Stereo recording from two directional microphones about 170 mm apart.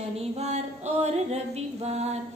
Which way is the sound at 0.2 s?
40° right (ahead or behind).